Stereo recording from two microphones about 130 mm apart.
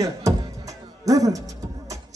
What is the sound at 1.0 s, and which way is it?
Speech, 25° right (ahead or behind).